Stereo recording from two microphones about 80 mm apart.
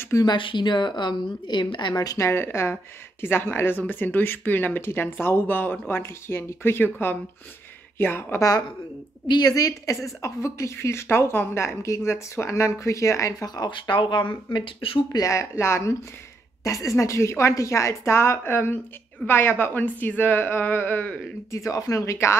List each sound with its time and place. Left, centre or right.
0.2 s a woman's voice: left
2.1 s a woman's voice: left
9.6 s a woman's voice: left
13.6 s speech: left
15.1 s a woman's voice: left
21.5 s a woman's voice: left